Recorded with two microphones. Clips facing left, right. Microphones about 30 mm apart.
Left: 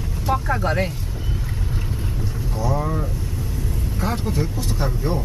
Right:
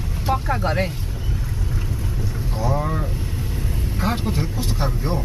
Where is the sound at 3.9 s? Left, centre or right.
Right.